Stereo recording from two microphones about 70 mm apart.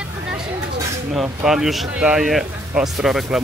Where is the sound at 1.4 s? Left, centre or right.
Centre.